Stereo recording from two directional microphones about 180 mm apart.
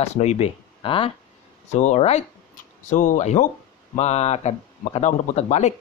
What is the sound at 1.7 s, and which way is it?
Speech, 40° left (ahead or behind).